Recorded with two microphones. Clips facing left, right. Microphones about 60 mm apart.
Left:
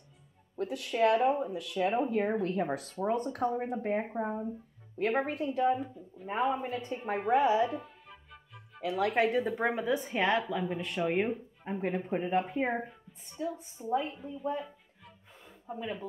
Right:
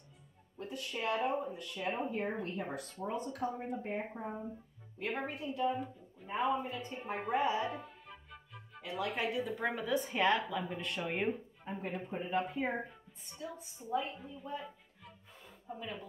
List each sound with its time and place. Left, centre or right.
0.6 s speech: left
7.2 s speech: left
7.6 s music: centre
8.8 s speech: left
9.1 s speech: left
9.6 s a woman's voice: centre
11.8 s speech: left
12.3 s a woman's voice: left
15.7 s speech: left